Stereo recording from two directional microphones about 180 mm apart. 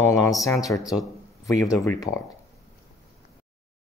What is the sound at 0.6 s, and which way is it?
Speech, 20° left (ahead or behind).